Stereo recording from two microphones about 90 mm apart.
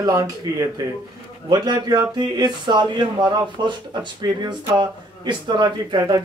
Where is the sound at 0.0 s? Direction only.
40° right (ahead or behind).